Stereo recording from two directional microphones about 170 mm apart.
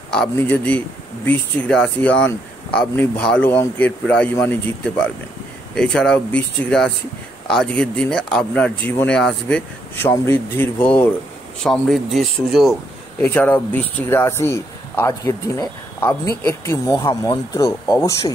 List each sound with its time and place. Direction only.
0.1 s speech: 5° left (ahead or behind)
13.2 s speech: 10° left (ahead or behind)